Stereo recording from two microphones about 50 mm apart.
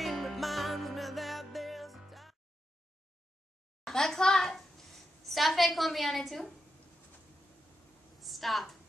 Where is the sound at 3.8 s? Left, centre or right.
Centre.